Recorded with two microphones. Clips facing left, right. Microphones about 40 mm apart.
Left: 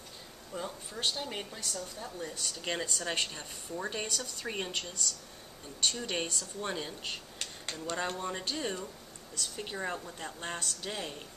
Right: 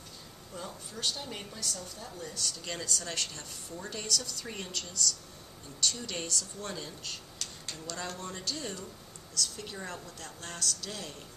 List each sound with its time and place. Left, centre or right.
0.6 s a woman's voice: left